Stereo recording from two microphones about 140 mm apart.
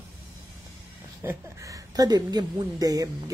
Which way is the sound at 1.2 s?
20° right (ahead or behind).